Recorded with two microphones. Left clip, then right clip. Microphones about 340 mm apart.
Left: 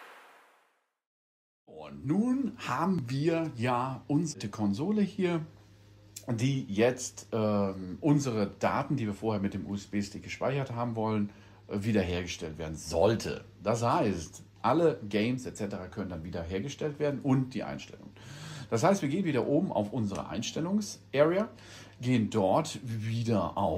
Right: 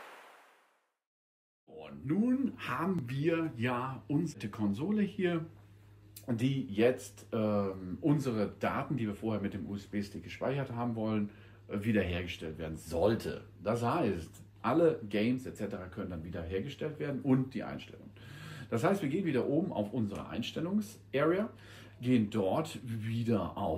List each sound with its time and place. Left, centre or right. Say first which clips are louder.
1.8 s speech: left 2 dB; centre
11.7 s speech: left 2 dB; centre